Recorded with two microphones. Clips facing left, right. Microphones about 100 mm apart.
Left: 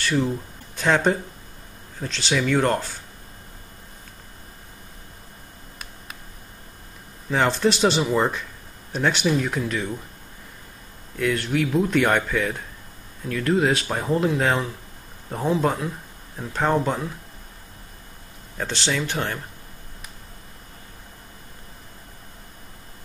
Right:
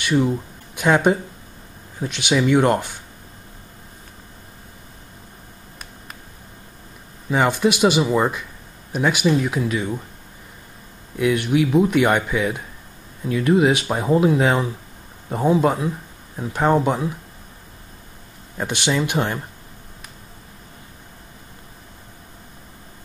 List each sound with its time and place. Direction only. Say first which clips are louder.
0.0 s speech: right 4 dB; 15° right (ahead or behind)
7.2 s speech: right 2 dB; 10° right (ahead or behind)
11.1 s speech: right 4 dB; 15° right (ahead or behind)
18.6 s speech: right 4 dB; 15° right (ahead or behind)